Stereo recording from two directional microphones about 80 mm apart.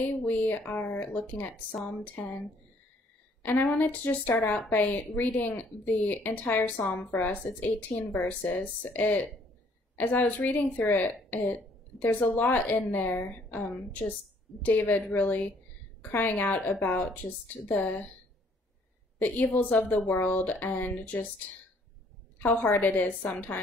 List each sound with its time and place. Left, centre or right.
0.1 s a woman's voice: left
3.4 s a woman's voice: left
17.2 s speech: left
17.6 s a woman's voice: centre
19.1 s a woman's voice: left
22.4 s a woman's voice: left